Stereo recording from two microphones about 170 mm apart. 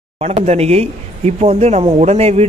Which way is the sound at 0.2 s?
40° right (ahead or behind).